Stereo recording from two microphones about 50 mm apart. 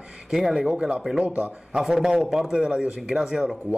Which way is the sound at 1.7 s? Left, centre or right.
Centre.